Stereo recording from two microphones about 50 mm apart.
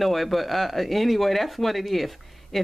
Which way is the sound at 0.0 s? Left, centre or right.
Centre.